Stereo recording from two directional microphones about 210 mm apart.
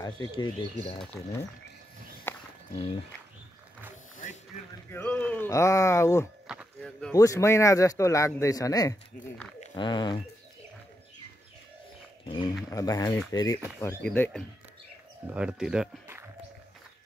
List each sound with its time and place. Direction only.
0.0 s speech: 20° left (ahead or behind)
1.1 s speech: centre (ahead or behind)
2.3 s walk: 10° left (ahead or behind)
4.9 s speech: 10° left (ahead or behind)
6.4 s a sound: 5° right (ahead or behind)
7.1 s speech: 15° left (ahead or behind)
12.7 s speech: 15° left (ahead or behind)
15.3 s speech: 5° right (ahead or behind)